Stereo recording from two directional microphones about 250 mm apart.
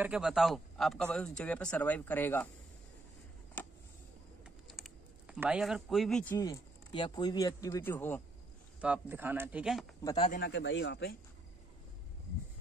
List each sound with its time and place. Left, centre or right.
0.0 s a man's voice: centre
3.6 s a sound: centre
4.6 s speech: centre
8.8 s a man's voice: centre
10.0 s speech: left
10.4 s a man's voice: left